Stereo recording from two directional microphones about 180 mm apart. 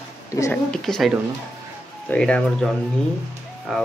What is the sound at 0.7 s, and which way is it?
Speech, centre (ahead or behind).